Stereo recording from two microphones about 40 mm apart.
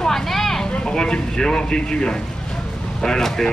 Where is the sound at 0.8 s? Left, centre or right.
Left.